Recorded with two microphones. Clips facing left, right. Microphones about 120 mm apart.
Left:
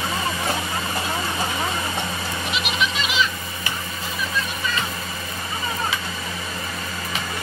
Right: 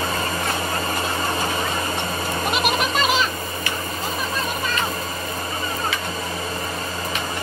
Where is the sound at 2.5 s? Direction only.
45° right (ahead or behind).